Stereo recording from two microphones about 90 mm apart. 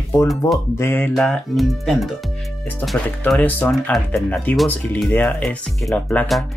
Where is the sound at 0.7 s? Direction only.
25° left (ahead or behind).